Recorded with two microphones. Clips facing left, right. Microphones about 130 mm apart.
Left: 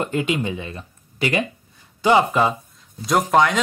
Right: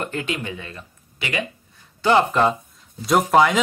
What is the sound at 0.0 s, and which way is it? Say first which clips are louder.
Speech: left 5 dB; 20° left (ahead or behind).